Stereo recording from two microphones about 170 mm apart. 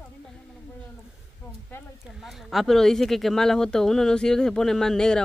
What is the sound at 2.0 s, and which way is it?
Speech, centre (ahead or behind).